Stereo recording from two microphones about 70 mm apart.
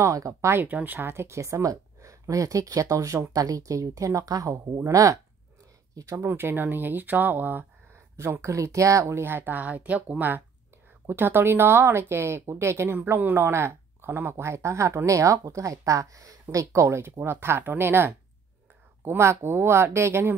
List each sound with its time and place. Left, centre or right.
0.0 s speech: right
0.7 s speech: right
6.1 s speech: right